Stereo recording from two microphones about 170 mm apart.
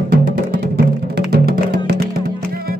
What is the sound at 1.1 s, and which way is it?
Music, 70° right (ahead or behind).